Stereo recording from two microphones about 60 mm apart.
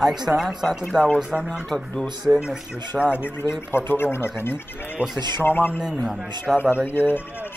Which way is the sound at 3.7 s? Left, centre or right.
Left.